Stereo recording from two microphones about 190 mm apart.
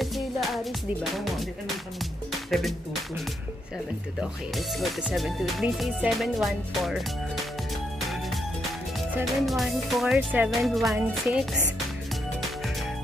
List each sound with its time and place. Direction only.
0.0 s music: centre (ahead or behind)
2.5 s speech: centre (ahead or behind)
4.2 s speech: centre (ahead or behind)
9.2 s speech: centre (ahead or behind)
11.0 s music: 15° right (ahead or behind)